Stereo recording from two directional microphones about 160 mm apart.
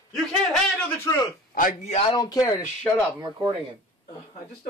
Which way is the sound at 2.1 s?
25° left (ahead or behind).